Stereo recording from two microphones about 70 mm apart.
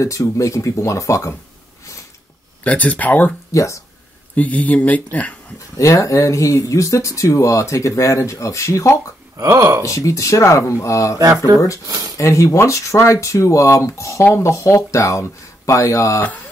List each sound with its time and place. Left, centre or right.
0.0 s speech: left
2.6 s speech: left
3.5 s speech: left
4.4 s speech: left
5.8 s speech: left
9.4 s speech: right
9.8 s speech: left
11.1 s speech: right
12.2 s speech: left